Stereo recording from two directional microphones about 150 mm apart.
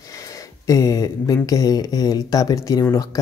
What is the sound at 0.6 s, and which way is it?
Speech, 20° left (ahead or behind).